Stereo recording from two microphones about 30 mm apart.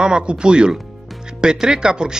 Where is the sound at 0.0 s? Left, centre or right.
Right.